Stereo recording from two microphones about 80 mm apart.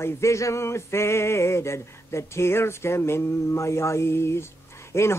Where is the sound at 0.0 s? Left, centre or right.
Left.